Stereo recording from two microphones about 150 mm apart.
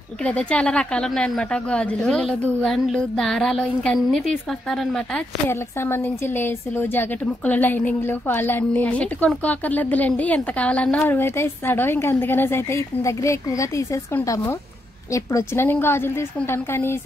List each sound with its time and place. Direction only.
0.2 s a woman's voice: 5° left (ahead or behind)
5.5 s speech: 15° left (ahead or behind)